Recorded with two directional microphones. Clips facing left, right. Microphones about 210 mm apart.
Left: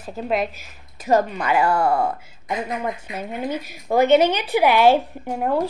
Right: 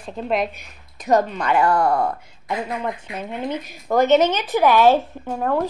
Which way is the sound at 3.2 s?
10° left (ahead or behind).